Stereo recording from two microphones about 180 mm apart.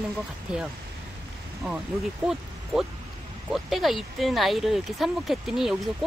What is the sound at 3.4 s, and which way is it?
Speech, centre (ahead or behind).